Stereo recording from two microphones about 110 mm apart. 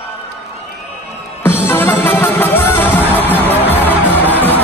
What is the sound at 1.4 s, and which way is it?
Music, 20° left (ahead or behind).